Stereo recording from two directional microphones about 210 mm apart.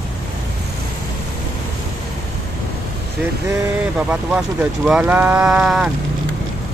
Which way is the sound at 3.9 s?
5° right (ahead or behind).